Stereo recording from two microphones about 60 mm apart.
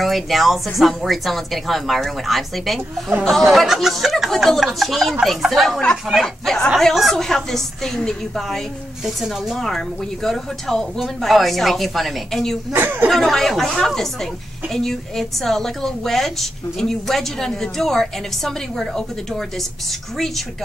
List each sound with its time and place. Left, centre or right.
0.0 s a woman's voice: centre
9.0 s a woman's voice: centre
12.7 s a woman's voice: right
13.1 s a woman's voice: centre